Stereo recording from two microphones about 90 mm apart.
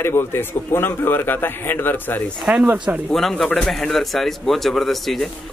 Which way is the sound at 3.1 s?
5° left (ahead or behind).